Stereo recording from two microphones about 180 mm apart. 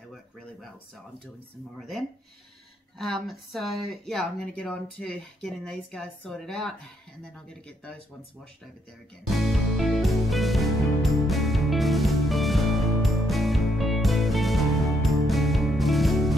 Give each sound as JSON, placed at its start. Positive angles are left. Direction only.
{"t": 1.8, "sound": "speech", "side_deg": 0}
{"t": 9.3, "sound": "music", "side_deg": 0}